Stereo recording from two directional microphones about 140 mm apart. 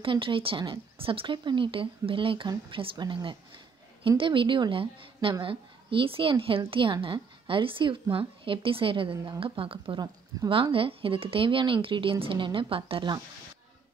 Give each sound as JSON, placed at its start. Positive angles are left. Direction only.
{"t": 0.0, "sound": "a woman's voice", "side_deg": -40}